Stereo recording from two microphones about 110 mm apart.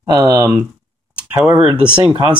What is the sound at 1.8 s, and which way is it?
Speech, 45° right (ahead or behind).